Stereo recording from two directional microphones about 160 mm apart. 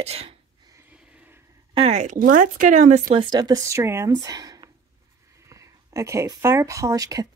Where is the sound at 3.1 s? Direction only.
25° right (ahead or behind).